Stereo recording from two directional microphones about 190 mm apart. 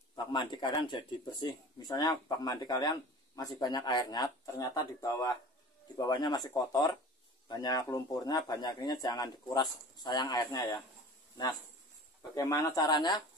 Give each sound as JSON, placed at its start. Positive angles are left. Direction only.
{"t": 0.1, "sound": "speech", "side_deg": 25}
{"t": 12.2, "sound": "speech", "side_deg": 15}